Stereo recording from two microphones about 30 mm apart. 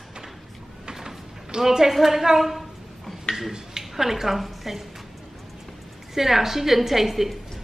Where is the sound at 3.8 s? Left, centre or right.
Centre.